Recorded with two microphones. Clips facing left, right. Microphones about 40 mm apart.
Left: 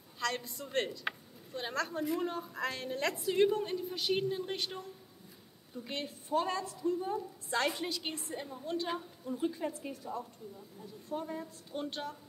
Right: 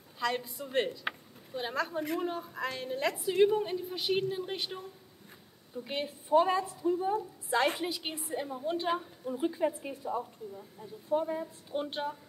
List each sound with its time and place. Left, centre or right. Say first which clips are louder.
0.2 s a woman's voice: right 3 dB; centre
5.9 s a woman's voice: right 6 dB; centre